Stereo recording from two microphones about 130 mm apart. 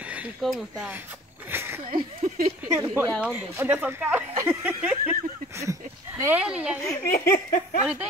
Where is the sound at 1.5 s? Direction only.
20° right (ahead or behind).